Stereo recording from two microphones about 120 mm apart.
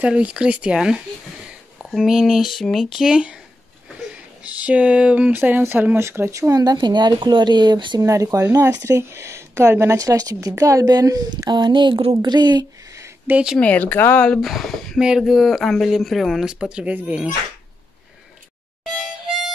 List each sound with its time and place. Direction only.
0.0 s speech: 10° right (ahead or behind)
4.6 s speech: 10° right (ahead or behind); by 8.0 s 40° right (ahead or behind)
8.0 s speech: 25° right (ahead or behind)
13.3 s speech: 10° right (ahead or behind)
13.6 s speech: 15° left (ahead or behind)
14.5 s a sound: centre (ahead or behind)
15.0 s speech: 5° right (ahead or behind)